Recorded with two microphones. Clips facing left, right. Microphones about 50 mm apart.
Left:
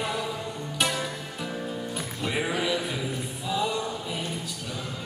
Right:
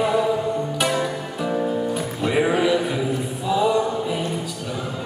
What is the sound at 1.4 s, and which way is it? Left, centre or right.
Music, right.